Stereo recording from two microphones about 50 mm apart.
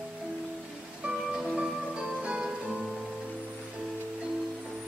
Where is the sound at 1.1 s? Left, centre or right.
Centre.